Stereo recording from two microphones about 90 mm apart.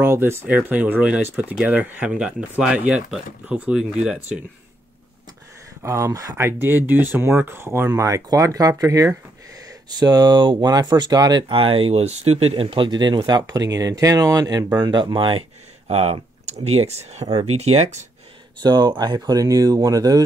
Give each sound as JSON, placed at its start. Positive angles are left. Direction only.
{"t": 0.0, "sound": "speech", "side_deg": -30}
{"t": 5.8, "sound": "speech", "side_deg": -30}
{"t": 8.1, "sound": "speech", "side_deg": -40}
{"t": 13.5, "sound": "speech", "side_deg": -40}
{"t": 14.8, "sound": "speech", "side_deg": -55}
{"t": 15.9, "sound": "speech", "side_deg": -90}
{"t": 17.2, "sound": "speech", "side_deg": -50}
{"t": 18.6, "sound": "speech", "side_deg": -50}